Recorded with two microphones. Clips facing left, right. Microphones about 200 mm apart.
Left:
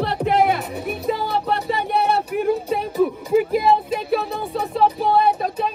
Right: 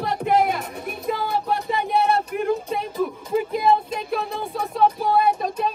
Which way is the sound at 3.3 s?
5° left (ahead or behind).